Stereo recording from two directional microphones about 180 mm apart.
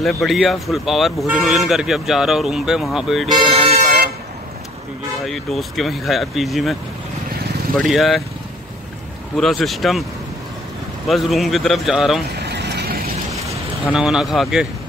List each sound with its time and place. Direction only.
0.0 s speech: centre (ahead or behind)
3.3 s speech: 30° right (ahead or behind)
5.2 s speech: centre (ahead or behind)
7.8 s speech: centre (ahead or behind)
9.4 s speech: centre (ahead or behind)
11.1 s speech: centre (ahead or behind)
12.4 s vehicle: 70° right (ahead or behind)
13.9 s speech: 5° right (ahead or behind)